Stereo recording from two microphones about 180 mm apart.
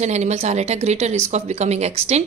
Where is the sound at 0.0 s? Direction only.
40° right (ahead or behind).